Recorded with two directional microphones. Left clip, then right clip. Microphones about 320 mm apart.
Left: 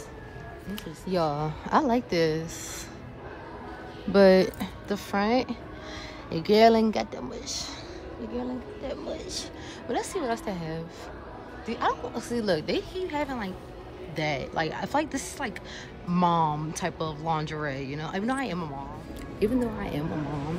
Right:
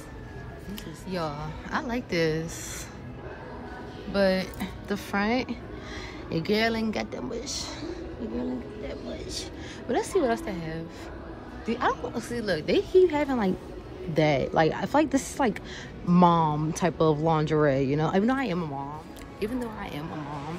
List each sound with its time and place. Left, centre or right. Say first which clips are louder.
1.0 s a woman's voice: left 6 dB; centre
4.1 s speech: left 6 dB; centre
4.6 s a woman's voice: even; centre